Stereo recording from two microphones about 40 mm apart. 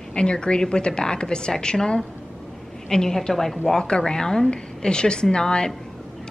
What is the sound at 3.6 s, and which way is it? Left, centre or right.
A woman's voice, centre.